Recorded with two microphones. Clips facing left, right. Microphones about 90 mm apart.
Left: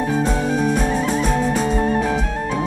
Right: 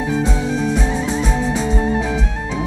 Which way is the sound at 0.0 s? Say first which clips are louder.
Even; 50° left (ahead or behind).